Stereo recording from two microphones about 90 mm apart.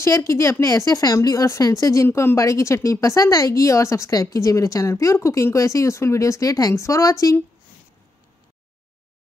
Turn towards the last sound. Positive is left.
turn(degrees=35)  # may be behind; listen again after turning